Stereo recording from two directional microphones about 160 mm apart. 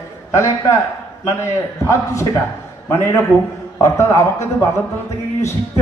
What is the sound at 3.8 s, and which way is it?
Speech, 15° left (ahead or behind).